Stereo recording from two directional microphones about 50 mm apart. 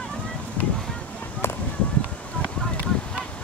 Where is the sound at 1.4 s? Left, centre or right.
Left.